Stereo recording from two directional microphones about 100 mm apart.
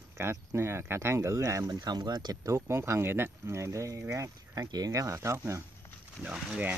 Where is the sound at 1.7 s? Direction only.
45° right (ahead or behind).